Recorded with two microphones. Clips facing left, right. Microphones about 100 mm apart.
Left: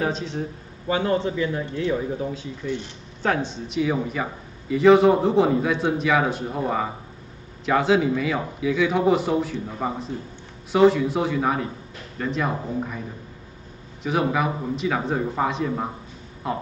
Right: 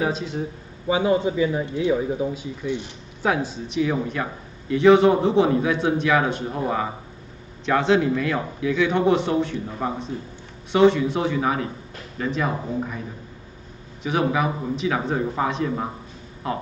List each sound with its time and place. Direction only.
0.0 s a man's voice: 5° right (ahead or behind)
14.0 s a man's voice: centre (ahead or behind)